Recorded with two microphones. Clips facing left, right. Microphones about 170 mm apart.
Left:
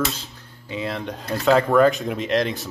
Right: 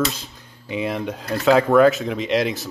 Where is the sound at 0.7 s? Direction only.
15° right (ahead or behind).